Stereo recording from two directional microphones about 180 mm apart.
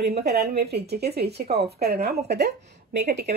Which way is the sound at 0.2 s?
60° right (ahead or behind).